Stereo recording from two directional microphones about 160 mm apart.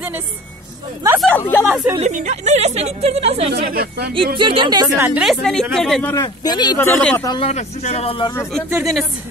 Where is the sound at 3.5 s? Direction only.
70° right (ahead or behind).